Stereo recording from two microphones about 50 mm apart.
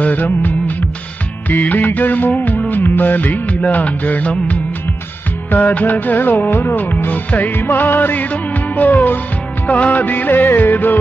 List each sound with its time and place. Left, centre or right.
0.0 s music of bollywood: left
1.5 s music: left
5.5 s music: left